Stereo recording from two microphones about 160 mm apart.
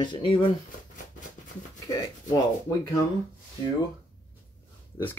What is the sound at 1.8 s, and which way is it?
Speech, 20° left (ahead or behind).